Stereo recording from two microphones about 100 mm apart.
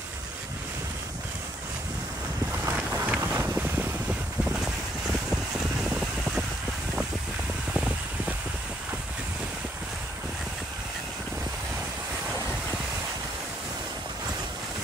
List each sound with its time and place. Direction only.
2.6 s boat: 15° right (ahead or behind)
4.5 s vehicle: 5° right (ahead or behind)
5.9 s a sound: 5° right (ahead or behind)
7.7 s mechanical fan: 10° right (ahead or behind)